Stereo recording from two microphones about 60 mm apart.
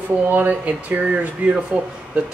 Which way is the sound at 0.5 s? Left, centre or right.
Right.